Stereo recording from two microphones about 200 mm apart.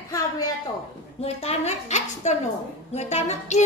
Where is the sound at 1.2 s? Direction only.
30° left (ahead or behind).